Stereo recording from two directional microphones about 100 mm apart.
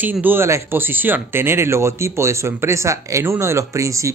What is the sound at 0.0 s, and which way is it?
Speech, 20° right (ahead or behind).